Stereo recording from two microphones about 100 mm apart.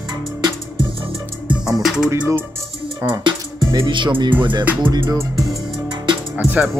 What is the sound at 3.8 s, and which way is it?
Speech, 50° right (ahead or behind).